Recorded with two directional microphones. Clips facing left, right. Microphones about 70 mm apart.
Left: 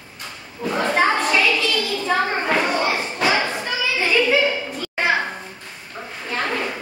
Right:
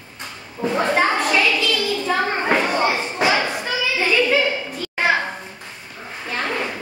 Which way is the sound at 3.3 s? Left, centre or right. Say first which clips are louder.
Even; centre.